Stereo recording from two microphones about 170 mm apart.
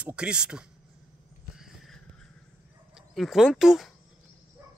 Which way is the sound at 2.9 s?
Centre (ahead or behind).